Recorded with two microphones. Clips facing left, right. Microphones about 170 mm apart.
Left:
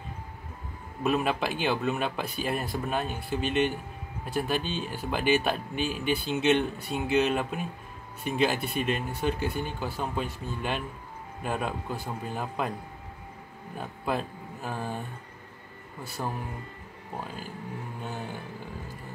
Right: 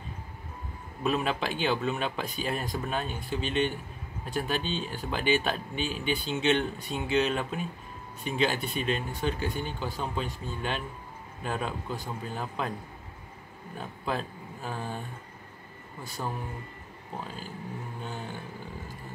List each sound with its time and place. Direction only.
1.0 s a man's voice: 5° left (ahead or behind)
13.7 s a man's voice: 5° left (ahead or behind)
16.2 s speech: 5° left (ahead or behind)